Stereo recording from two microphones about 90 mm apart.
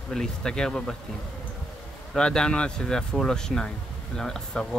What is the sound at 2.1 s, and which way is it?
Speech, 10° left (ahead or behind).